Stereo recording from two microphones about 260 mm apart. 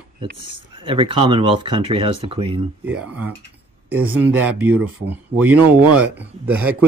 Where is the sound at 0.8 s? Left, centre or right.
Centre.